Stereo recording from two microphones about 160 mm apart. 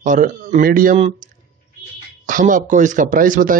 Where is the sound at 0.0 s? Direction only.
50° right (ahead or behind).